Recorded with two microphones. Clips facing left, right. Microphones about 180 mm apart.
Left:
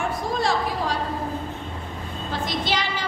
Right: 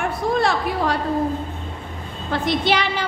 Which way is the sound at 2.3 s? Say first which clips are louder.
Right 6 dB; 60° right (ahead or behind).